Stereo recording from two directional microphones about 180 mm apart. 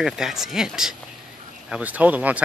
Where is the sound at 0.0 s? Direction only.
Centre (ahead or behind).